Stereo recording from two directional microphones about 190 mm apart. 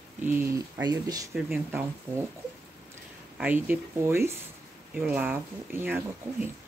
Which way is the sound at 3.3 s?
10° right (ahead or behind).